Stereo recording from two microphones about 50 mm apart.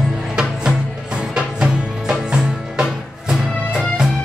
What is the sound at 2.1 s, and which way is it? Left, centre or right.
Music, centre.